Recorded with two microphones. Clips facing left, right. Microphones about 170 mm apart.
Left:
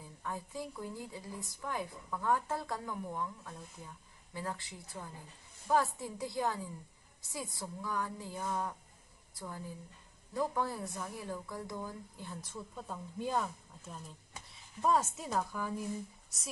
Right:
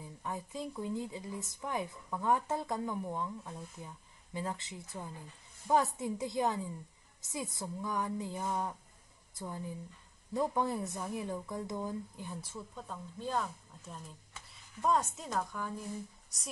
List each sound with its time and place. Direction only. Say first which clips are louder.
0.0 s speech: right 1 dB; 20° right (ahead or behind)
12.7 s speech: left 2 dB; 5° left (ahead or behind)
14.8 s speech: even; 5° left (ahead or behind)